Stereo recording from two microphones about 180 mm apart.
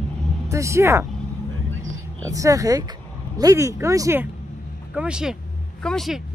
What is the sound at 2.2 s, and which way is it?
Speech, 20° right (ahead or behind).